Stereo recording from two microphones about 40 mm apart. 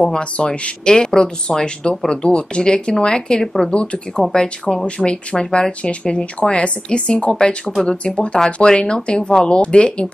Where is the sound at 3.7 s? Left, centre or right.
Left.